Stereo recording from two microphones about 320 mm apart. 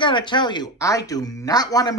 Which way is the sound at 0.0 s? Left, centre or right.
Centre.